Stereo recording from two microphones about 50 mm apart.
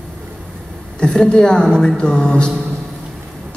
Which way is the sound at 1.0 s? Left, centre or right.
Centre.